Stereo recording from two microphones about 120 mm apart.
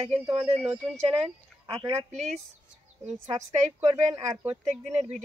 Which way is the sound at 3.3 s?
90° right.